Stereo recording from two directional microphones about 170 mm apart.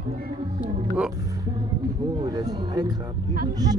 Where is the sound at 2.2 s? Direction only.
25° right (ahead or behind).